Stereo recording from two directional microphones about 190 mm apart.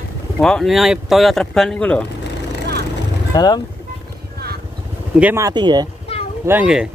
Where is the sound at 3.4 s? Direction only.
20° left (ahead or behind).